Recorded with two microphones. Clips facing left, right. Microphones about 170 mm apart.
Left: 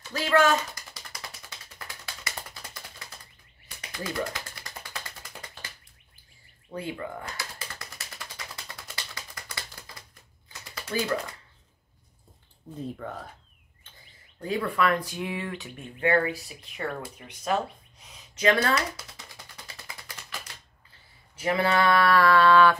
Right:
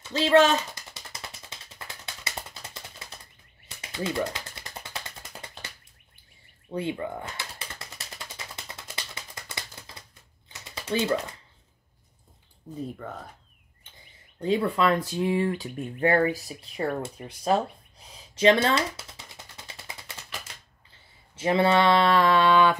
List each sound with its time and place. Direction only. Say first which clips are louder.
0.1 s typing: right 3 dB; 25° right (ahead or behind)
3.9 s a sound: right 3 dB; 25° right (ahead or behind)
6.7 s typing: right 4 dB; 25° right (ahead or behind)
10.6 s typewriter: right 3 dB; 25° right (ahead or behind)
12.7 s speech: even; centre (ahead or behind)
14.4 s speech: right 3 dB; 25° right (ahead or behind)
21.4 s speech: right 3 dB; 25° right (ahead or behind)